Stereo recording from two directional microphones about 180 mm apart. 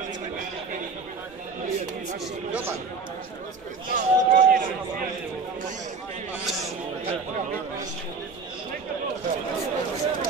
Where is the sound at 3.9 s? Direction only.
50° right (ahead or behind).